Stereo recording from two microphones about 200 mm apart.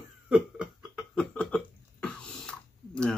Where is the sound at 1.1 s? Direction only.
5° left (ahead or behind).